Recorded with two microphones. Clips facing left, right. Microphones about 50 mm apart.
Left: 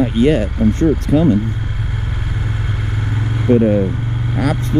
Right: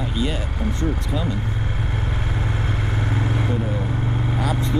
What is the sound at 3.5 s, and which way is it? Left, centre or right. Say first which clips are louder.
Speech: left 13 dB; left.